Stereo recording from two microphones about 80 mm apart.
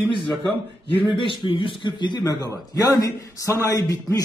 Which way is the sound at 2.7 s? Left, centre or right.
Left.